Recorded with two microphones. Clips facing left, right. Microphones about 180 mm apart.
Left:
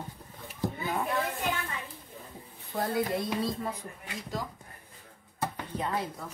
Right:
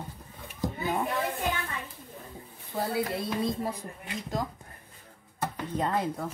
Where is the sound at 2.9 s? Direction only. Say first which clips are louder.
Left 1 dB; 5° right (ahead or behind).